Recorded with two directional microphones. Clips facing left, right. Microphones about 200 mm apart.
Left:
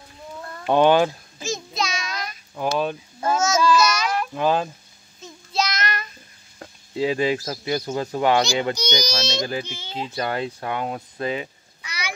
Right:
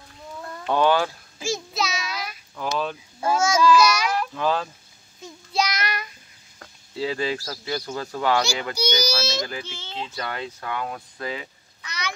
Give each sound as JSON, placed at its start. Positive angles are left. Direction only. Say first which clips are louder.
{"t": 0.4, "sound": "a sound", "louder": "right 2 dB", "side_deg": -10}
{"t": 0.7, "sound": "speech", "louder": "left 4 dB", "side_deg": 20}
{"t": 1.4, "sound": "child singing", "louder": "even", "side_deg": -5}
{"t": 2.5, "sound": "speech", "louder": "left 4 dB", "side_deg": 15}
{"t": 3.2, "sound": "child singing", "louder": "even", "side_deg": -10}
{"t": 4.3, "sound": "speech", "louder": "left 3 dB", "side_deg": 20}
{"t": 5.2, "sound": "child singing", "louder": "even", "side_deg": -10}
{"t": 6.6, "sound": "speech", "louder": "left 5 dB", "side_deg": 20}
{"t": 8.7, "sound": "a child's voice", "louder": "right 1 dB", "side_deg": -5}
{"t": 9.3, "sound": "speech", "louder": "left 3 dB", "side_deg": 25}
{"t": 11.8, "sound": "a sound", "louder": "right 1 dB", "side_deg": 10}